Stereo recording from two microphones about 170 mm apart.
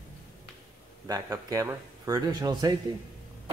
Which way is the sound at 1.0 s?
20° right (ahead or behind).